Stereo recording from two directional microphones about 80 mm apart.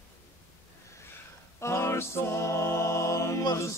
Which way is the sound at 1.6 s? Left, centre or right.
Left.